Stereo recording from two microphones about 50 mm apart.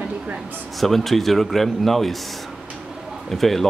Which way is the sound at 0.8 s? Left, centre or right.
Centre.